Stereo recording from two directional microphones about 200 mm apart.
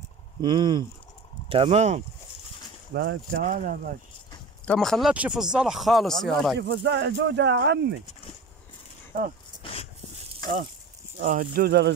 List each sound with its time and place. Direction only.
0.4 s speech: 25° right (ahead or behind)
2.9 s speech: 55° right (ahead or behind)
3.4 s speech: 45° right (ahead or behind)
4.6 s speech: centre (ahead or behind)
6.6 s speech: 60° right (ahead or behind)
9.6 s dog: 25° left (ahead or behind)
11.1 s speech: 40° right (ahead or behind)